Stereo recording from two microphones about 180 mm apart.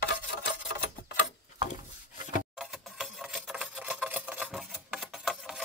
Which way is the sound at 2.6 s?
Centre (ahead or behind).